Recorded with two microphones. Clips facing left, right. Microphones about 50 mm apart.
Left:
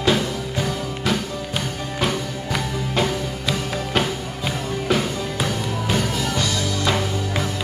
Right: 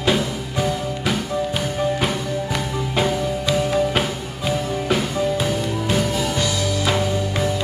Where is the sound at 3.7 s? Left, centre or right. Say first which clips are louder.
Right 3 dB; centre.